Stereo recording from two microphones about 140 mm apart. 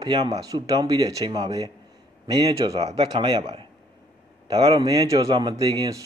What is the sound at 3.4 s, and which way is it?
Speech, 45° right (ahead or behind).